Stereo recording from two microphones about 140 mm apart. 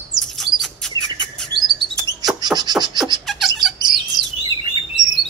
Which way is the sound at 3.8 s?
30° right (ahead or behind).